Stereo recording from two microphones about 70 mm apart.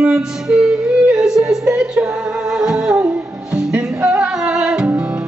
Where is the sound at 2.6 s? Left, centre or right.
Centre.